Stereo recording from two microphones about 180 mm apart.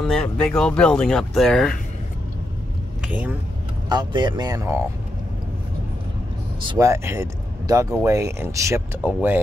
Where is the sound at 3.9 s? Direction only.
25° right (ahead or behind).